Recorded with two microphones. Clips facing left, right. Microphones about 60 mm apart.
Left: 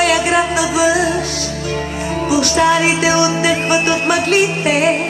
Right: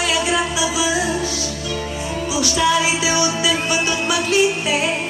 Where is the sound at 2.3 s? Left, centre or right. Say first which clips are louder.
Left 5 dB; left.